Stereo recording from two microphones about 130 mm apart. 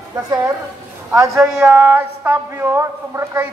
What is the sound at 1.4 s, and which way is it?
A man's voice, 5° right (ahead or behind).